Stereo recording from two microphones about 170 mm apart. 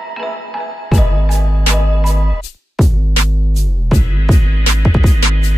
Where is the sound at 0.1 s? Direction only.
Centre (ahead or behind).